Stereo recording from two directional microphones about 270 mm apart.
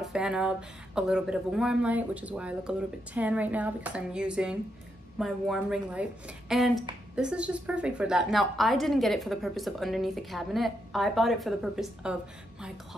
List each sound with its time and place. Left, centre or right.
0.0 s speech: centre